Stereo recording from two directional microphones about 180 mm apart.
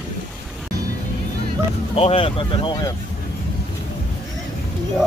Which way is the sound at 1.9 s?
30° left (ahead or behind).